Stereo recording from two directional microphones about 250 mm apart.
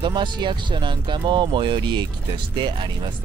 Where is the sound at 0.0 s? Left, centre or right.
Centre.